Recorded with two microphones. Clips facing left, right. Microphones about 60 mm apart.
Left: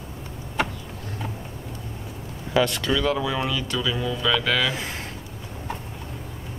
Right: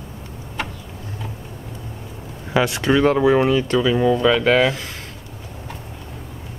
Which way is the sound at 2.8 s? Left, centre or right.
Right.